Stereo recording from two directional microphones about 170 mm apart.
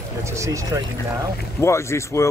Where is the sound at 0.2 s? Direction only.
15° right (ahead or behind).